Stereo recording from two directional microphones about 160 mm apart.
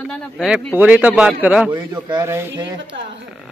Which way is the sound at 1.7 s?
30° right (ahead or behind).